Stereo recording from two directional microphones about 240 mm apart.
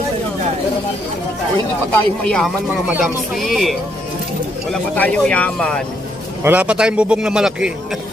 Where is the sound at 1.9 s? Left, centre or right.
Centre.